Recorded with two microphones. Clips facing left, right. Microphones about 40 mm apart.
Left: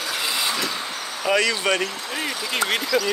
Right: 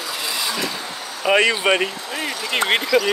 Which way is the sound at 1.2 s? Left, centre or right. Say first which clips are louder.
Right 4 dB; right.